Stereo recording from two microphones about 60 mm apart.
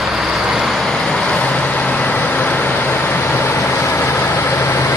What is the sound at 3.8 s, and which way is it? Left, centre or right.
Vehicle, left.